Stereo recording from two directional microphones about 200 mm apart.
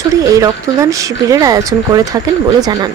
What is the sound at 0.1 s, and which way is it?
Speech, 15° right (ahead or behind).